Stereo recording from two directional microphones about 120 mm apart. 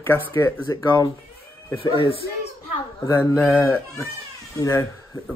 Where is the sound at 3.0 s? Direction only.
30° left (ahead or behind).